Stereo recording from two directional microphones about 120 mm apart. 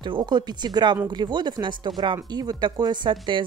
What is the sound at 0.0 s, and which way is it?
Speech, 40° right (ahead or behind).